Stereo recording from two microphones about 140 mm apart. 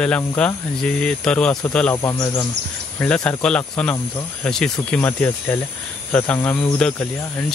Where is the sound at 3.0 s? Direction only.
5° left (ahead or behind).